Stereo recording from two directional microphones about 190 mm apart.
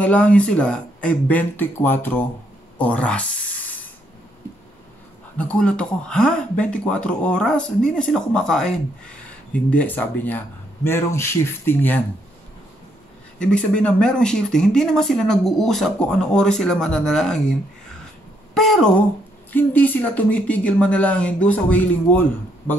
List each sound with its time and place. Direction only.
0.0 s speech: 5° left (ahead or behind)
5.4 s speech: 5° left (ahead or behind)
13.4 s speech: 5° left (ahead or behind)